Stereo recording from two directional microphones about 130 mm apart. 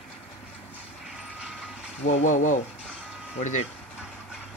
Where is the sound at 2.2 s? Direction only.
75° left (ahead or behind).